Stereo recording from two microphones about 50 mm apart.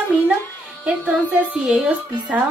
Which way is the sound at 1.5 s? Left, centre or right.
Centre.